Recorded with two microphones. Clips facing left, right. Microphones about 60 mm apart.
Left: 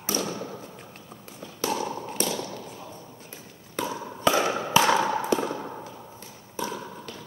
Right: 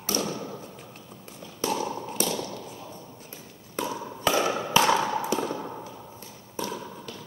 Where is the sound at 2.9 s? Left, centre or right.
Centre.